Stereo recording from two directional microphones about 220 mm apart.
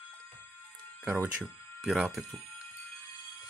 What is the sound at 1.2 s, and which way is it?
Speech, centre (ahead or behind).